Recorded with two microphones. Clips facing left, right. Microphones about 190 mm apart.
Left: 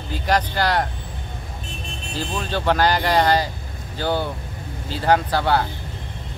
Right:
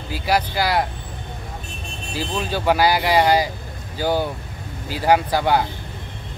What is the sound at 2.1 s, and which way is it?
Speech, 10° right (ahead or behind).